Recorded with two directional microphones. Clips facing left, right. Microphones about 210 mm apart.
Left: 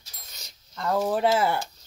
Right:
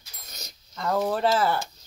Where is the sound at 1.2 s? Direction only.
20° left (ahead or behind).